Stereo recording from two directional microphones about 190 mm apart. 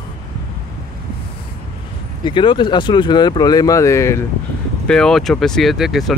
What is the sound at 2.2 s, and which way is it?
Speech, 25° left (ahead or behind).